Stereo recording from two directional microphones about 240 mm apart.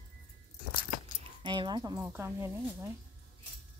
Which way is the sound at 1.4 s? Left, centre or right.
Centre.